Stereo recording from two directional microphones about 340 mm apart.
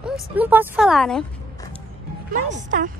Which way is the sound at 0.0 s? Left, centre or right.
Centre.